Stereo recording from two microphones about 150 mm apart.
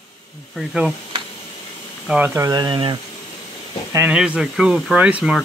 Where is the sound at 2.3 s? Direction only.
25° right (ahead or behind).